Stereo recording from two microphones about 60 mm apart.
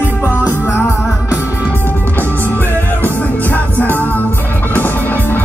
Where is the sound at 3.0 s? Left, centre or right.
Left.